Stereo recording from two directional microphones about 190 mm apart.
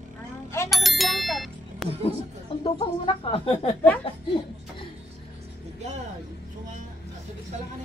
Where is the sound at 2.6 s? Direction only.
30° left (ahead or behind).